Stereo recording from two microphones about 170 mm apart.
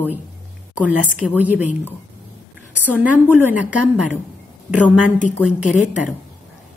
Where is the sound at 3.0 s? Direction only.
10° right (ahead or behind).